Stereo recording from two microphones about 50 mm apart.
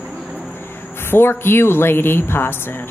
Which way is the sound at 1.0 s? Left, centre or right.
Left.